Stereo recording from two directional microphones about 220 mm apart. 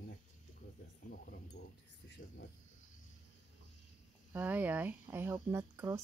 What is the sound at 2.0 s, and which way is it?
Speech, 50° left (ahead or behind).